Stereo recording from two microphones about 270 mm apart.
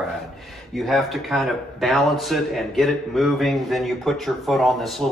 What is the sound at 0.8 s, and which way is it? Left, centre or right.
A man's voice, centre.